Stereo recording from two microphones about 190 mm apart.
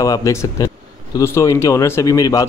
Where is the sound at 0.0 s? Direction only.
15° left (ahead or behind).